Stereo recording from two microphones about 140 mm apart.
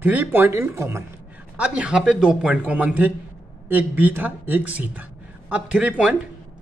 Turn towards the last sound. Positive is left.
turn(degrees=-10)  # may be behind; listen again after turning